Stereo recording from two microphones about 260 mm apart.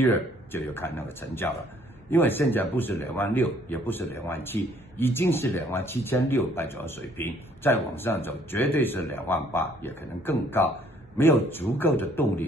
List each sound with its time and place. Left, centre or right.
0.0 s a man's voice: centre